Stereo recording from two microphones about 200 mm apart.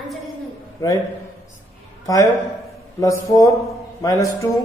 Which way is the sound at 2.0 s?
15° left (ahead or behind).